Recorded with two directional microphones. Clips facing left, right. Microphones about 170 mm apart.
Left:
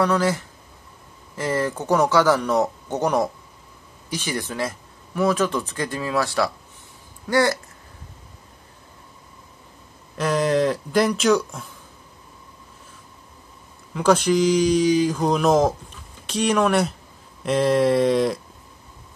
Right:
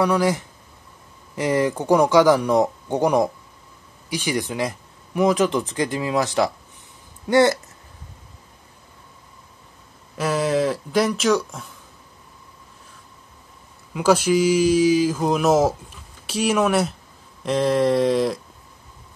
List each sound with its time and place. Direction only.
0.0 s speech: 15° right (ahead or behind)
10.1 s speech: 5° right (ahead or behind)
13.9 s speech: 5° right (ahead or behind)